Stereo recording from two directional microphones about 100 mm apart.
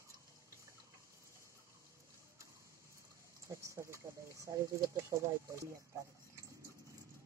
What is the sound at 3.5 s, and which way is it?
Speech, 30° right (ahead or behind).